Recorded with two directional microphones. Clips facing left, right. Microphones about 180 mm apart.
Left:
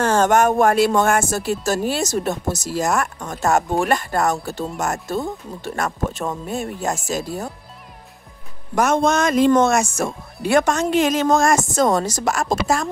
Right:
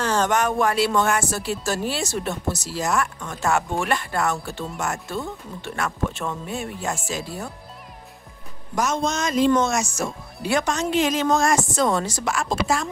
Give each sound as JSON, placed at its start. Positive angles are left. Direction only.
{"t": 0.0, "sound": "speech", "side_deg": 50}
{"t": 8.7, "sound": "speech", "side_deg": 55}